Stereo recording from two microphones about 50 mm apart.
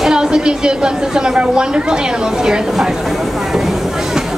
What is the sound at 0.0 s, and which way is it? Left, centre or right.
Speech, centre.